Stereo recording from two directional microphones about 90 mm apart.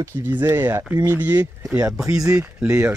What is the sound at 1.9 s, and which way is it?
Speech, 5° right (ahead or behind).